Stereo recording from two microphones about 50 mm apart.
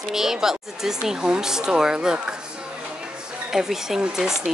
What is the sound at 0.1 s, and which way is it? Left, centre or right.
Speech, centre.